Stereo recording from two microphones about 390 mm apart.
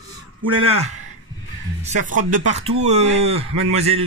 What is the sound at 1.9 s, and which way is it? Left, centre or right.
Speech, centre.